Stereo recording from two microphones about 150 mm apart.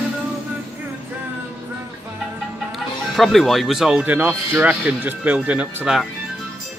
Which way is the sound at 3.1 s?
Centre (ahead or behind).